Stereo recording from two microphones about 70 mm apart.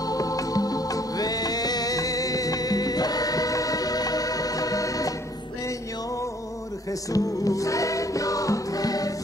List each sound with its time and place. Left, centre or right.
0.0 s music: left
6.9 s music: left